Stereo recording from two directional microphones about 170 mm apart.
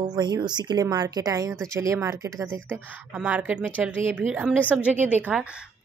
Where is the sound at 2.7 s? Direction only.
10° right (ahead or behind).